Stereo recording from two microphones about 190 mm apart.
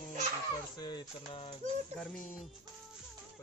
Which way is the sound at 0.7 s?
25° left (ahead or behind).